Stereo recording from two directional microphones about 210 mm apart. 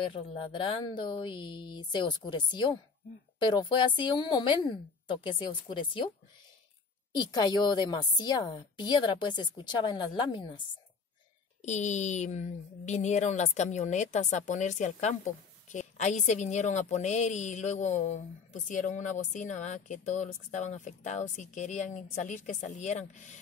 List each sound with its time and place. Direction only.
0.0 s a woman's voice: 25° left (ahead or behind)
7.2 s a woman's voice: 20° left (ahead or behind)
11.6 s a woman's voice: 35° left (ahead or behind)